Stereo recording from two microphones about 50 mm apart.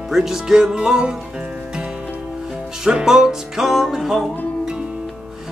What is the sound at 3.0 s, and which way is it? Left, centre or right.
Music, centre.